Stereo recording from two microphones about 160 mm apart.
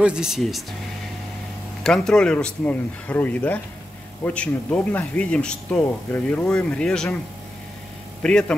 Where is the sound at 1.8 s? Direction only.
5° left (ahead or behind).